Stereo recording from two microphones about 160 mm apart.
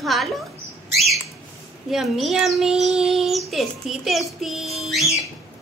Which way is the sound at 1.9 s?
Centre (ahead or behind).